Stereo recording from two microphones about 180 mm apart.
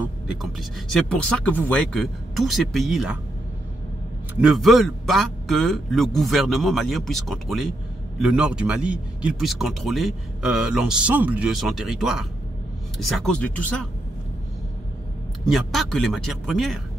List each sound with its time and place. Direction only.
0.0 s speech: 5° right (ahead or behind)
4.4 s speech: centre (ahead or behind)
15.4 s speech: centre (ahead or behind)